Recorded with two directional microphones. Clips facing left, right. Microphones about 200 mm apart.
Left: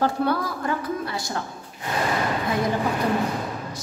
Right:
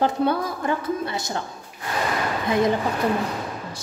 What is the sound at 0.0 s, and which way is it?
A woman's voice, 20° right (ahead or behind).